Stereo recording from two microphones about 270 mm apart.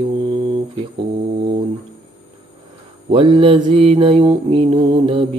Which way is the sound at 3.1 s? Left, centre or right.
Centre.